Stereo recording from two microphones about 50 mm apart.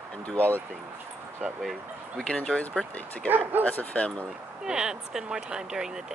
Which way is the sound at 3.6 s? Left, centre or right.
Left.